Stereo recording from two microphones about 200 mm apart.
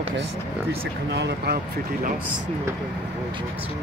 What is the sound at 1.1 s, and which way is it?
Speech, 60° right (ahead or behind).